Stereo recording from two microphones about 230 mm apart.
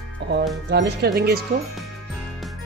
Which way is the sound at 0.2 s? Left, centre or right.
Right.